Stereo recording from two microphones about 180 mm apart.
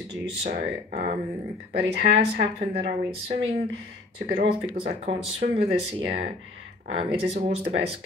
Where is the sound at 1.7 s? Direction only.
65° right (ahead or behind).